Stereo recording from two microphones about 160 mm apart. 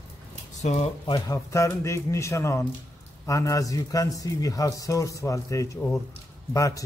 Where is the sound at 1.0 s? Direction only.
25° left (ahead or behind).